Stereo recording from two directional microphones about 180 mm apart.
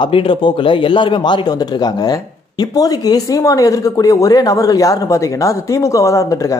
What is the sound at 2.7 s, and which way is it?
Speech, 20° left (ahead or behind).